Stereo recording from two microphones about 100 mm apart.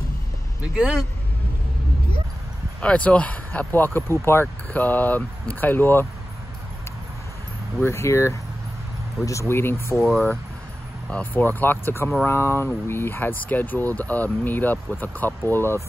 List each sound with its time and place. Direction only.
0.6 s speech: 5° right (ahead or behind)
2.8 s speech: 10° left (ahead or behind)
7.8 s speech: 30° left (ahead or behind)
11.1 s speech: 15° left (ahead or behind)